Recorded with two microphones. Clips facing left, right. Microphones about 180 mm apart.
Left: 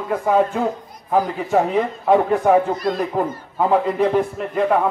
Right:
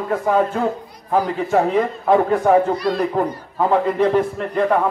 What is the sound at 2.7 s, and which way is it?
Speech, 45° left (ahead or behind).